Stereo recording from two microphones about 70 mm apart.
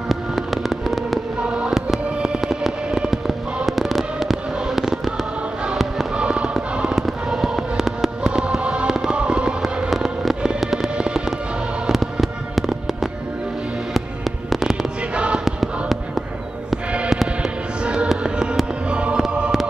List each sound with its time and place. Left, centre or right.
0.1 s fireworks: centre
1.4 s fireworks: centre
6.1 s music: centre
7.0 s fireworks: centre
13.9 s music: centre
15.1 s choir: centre
15.4 s basketball bounce: centre
17.1 s music: centre
18.9 s fireworks: centre